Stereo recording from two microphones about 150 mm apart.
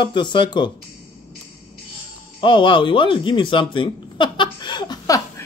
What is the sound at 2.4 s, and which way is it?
Speech, 35° left (ahead or behind).